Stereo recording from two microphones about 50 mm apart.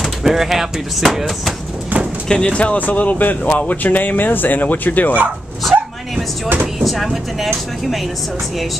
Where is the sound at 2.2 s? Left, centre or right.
Centre; by 5.1 s left.